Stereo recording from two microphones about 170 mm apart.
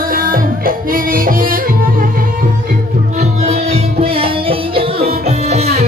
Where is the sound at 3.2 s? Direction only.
40° right (ahead or behind).